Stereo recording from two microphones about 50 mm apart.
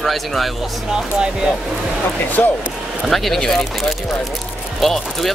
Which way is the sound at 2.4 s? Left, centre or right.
Left.